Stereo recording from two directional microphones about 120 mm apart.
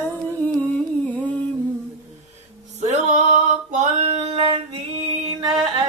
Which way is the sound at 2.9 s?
90° right.